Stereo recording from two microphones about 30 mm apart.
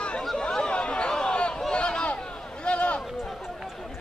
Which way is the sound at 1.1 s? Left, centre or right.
Left.